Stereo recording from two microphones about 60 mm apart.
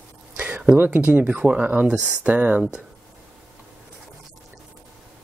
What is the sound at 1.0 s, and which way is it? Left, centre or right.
Speech, right.